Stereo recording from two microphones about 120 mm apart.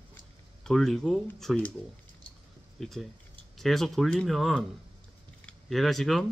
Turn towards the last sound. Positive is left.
turn(degrees=0)  # may be behind; listen again after turning